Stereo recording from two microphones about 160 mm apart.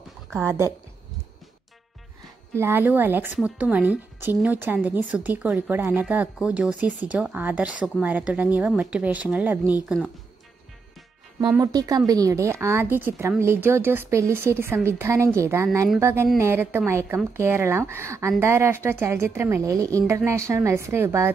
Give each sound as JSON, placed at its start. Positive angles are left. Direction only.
{"t": 0.5, "sound": "speech", "side_deg": -20}
{"t": 2.5, "sound": "speech", "side_deg": -15}
{"t": 11.6, "sound": "speech", "side_deg": -25}